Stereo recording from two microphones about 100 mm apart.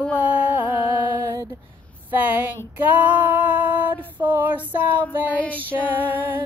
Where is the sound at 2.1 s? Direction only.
20° right (ahead or behind).